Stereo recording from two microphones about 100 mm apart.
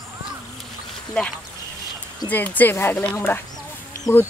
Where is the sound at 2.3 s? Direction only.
15° left (ahead or behind).